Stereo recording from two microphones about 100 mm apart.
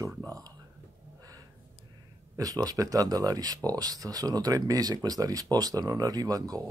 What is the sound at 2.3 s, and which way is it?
Speech, 40° right (ahead or behind).